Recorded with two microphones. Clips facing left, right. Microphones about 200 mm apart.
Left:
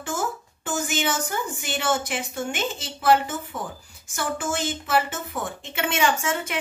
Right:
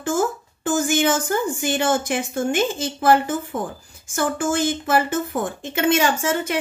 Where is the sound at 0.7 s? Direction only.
45° right (ahead or behind).